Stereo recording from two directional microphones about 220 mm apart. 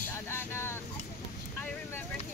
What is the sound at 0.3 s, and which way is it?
Vehicle, 10° left (ahead or behind).